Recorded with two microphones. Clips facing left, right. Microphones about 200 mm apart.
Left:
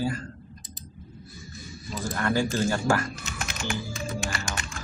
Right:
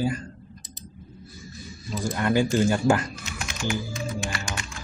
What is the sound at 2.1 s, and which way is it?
Speech, 20° right (ahead or behind).